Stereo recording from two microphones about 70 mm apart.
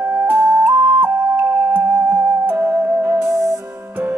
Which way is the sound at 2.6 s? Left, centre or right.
Right.